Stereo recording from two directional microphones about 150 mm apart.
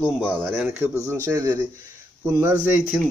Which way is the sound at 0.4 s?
15° right (ahead or behind).